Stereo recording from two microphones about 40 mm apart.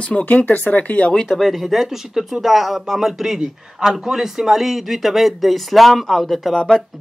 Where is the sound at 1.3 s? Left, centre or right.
Centre.